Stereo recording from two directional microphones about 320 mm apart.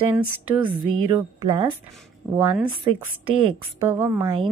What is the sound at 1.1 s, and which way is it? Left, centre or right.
A woman's voice, centre.